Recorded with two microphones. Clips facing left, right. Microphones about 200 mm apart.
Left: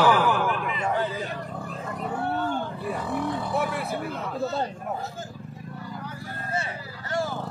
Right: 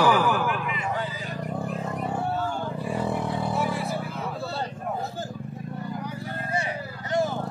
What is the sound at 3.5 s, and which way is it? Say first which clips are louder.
Vehicle: even; 60° left (ahead or behind).